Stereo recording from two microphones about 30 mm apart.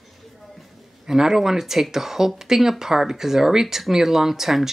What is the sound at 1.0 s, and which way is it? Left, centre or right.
Speech, centre.